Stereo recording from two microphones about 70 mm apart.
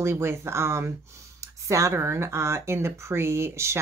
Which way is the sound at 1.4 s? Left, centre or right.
Right.